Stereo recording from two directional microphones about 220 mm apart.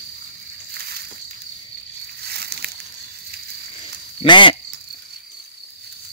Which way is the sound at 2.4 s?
45° right (ahead or behind).